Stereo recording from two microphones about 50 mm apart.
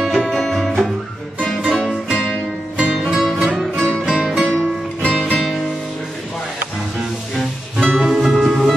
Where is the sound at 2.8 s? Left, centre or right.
Centre.